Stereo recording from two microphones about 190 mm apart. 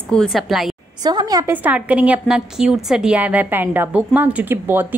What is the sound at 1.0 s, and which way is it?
Speech, 20° right (ahead or behind).